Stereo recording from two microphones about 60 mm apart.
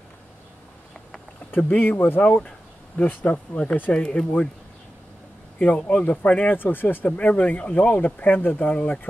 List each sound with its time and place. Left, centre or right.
1.8 s speech: left
2.2 s speech: left
5.6 s speech: left
6.6 s speech: left
7.1 s speech: left